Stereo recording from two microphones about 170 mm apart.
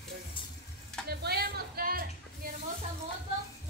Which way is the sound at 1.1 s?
70° right (ahead or behind).